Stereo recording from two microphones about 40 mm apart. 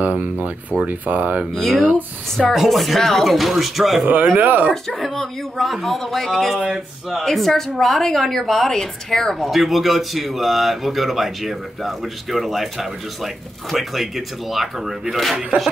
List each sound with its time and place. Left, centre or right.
0.0 s speech: right
1.5 s speech: centre
4.0 s speech: right
4.8 s a woman's voice: centre
9.4 s speech: centre